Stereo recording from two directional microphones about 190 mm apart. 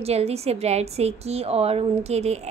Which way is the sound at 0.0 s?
35° right (ahead or behind).